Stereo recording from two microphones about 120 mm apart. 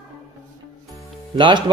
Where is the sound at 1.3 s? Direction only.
40° right (ahead or behind).